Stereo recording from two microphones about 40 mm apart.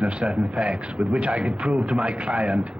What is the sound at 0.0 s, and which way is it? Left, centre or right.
A man's voice, right.